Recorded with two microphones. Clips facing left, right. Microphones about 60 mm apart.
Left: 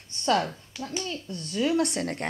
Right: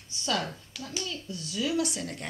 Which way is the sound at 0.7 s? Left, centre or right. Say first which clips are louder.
Left 6 dB; left.